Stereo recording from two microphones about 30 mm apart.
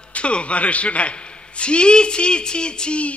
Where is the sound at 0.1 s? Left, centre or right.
Left.